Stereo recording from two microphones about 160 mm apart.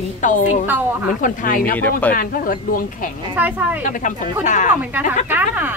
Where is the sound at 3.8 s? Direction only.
50° left (ahead or behind).